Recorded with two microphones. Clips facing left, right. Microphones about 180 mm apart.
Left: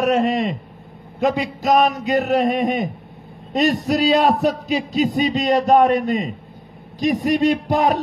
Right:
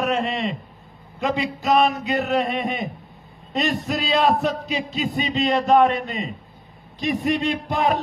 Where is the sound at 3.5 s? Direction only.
40° left (ahead or behind).